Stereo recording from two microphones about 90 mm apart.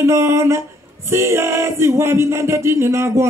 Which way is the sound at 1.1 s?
30° right (ahead or behind).